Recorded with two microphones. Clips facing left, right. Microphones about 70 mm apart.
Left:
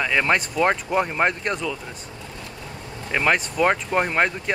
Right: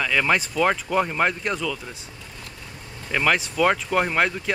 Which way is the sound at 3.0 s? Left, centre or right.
Centre.